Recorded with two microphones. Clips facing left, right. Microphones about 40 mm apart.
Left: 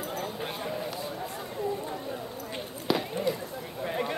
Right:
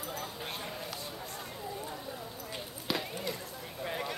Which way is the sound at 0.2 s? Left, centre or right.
Centre.